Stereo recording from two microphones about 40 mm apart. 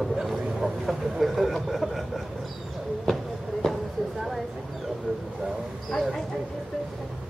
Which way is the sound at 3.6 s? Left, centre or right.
Centre.